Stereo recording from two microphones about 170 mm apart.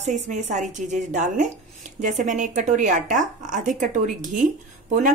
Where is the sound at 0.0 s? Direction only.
45° right (ahead or behind).